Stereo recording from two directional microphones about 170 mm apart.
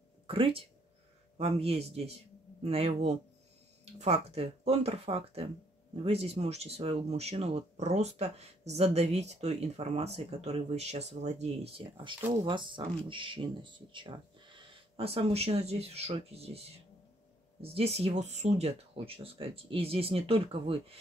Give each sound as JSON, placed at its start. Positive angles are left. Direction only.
{"t": 0.3, "sound": "speech", "side_deg": -35}